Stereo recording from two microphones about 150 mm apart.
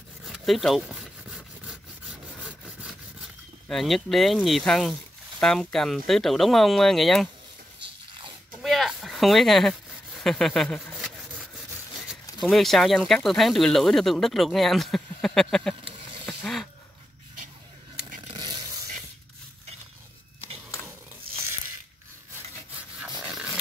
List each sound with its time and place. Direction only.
0.2 s a sound: centre (ahead or behind)
3.6 s speech: centre (ahead or behind)
8.6 s a sound: centre (ahead or behind)
12.1 s speech: centre (ahead or behind)
16.3 s mechanisms: centre (ahead or behind)
18.3 s vehicle: 30° right (ahead or behind)
22.9 s rub: 5° right (ahead or behind)